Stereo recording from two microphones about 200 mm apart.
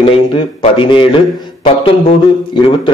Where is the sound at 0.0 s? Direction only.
25° left (ahead or behind).